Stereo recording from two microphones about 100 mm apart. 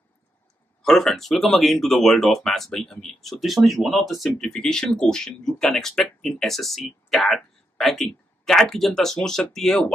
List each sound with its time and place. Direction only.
0.8 s speech: 5° left (ahead or behind)